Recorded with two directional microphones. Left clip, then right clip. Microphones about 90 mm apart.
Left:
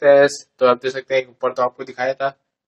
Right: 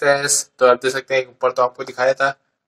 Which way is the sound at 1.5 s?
40° right (ahead or behind).